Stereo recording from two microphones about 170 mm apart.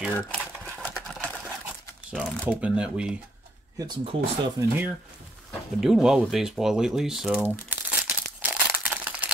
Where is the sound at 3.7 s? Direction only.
30° right (ahead or behind).